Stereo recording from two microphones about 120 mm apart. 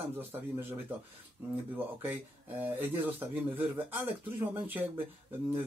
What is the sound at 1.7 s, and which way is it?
Speech, 15° right (ahead or behind).